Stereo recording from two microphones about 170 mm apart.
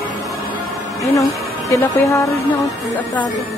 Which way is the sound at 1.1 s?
20° left (ahead or behind).